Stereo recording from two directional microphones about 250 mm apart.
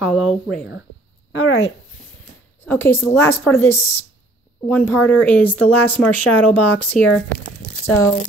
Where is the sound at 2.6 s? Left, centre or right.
Centre.